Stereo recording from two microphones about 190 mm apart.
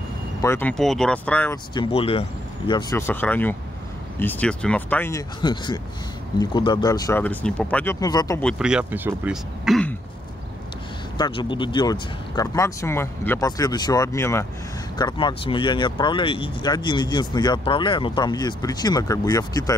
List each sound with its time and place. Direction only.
0.4 s speech: 10° left (ahead or behind)
1.7 s speech: 30° left (ahead or behind)
2.9 s speech: 15° left (ahead or behind)
5.4 s speech: 25° left (ahead or behind)
8.5 s speech: 5° right (ahead or behind)
11.1 s speech: 25° left (ahead or behind)